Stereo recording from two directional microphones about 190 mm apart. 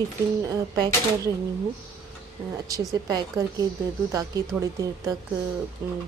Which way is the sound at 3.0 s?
20° right (ahead or behind).